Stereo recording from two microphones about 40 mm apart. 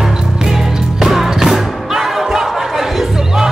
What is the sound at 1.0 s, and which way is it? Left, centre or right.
Music, centre.